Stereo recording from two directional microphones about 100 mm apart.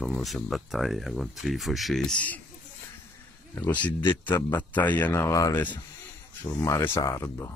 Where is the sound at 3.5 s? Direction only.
20° left (ahead or behind).